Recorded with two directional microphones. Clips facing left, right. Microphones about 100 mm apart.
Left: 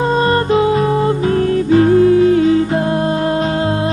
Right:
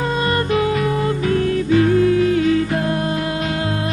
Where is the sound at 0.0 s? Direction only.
35° left (ahead or behind).